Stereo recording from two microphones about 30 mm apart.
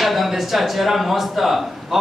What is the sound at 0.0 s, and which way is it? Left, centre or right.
Speech, centre.